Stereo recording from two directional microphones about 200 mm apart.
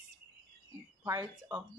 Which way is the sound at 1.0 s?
15° right (ahead or behind).